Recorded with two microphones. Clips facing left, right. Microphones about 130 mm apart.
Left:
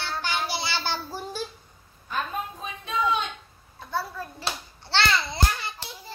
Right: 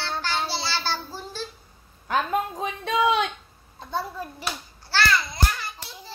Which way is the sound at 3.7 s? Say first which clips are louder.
Right 1 dB; 20° right (ahead or behind).